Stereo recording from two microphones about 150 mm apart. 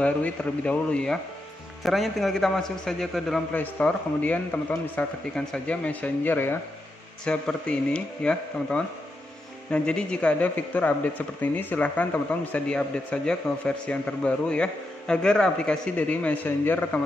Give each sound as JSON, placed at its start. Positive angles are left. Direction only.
{"t": 0.0, "sound": "a man's voice", "side_deg": 10}